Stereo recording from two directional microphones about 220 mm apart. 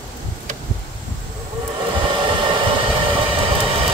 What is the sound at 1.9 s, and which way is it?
Vehicle, 25° right (ahead or behind).